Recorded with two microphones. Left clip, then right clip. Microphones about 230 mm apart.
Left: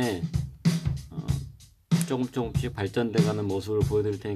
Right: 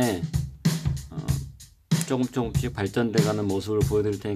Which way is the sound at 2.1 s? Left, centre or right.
Centre.